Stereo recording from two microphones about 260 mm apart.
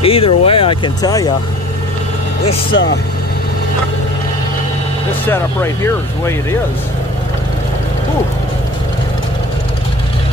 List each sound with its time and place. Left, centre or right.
0.0 s speech: left
2.7 s speech: left
5.2 s speech: centre